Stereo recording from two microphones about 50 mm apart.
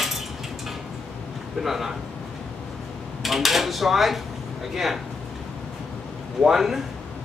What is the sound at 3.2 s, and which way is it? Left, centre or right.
A man's voice, centre.